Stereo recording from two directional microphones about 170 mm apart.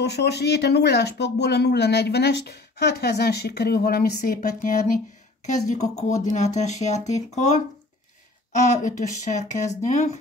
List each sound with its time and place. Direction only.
0.0 s speech: 75° left (ahead or behind); by 7.6 s 45° left (ahead or behind)
8.7 s speech: 45° left (ahead or behind)